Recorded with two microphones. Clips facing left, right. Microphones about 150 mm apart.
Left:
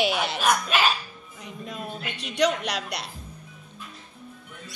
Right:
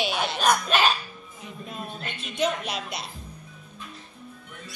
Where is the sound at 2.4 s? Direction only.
75° left (ahead or behind).